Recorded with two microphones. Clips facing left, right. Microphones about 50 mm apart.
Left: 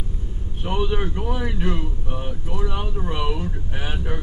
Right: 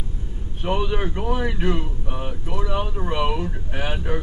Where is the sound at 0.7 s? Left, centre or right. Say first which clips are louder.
Left 3 dB; centre.